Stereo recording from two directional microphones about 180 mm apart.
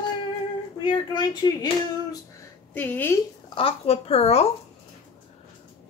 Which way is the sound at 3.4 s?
30° left (ahead or behind).